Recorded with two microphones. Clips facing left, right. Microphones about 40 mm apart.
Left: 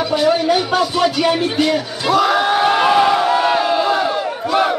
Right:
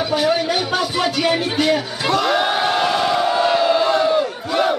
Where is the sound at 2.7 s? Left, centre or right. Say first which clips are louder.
Left 5 dB; left.